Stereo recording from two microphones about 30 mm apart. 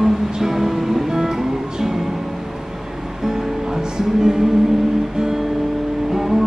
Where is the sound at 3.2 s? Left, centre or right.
Centre.